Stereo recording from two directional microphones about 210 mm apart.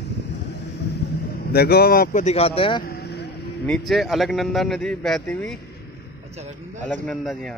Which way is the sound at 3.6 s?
Centre (ahead or behind).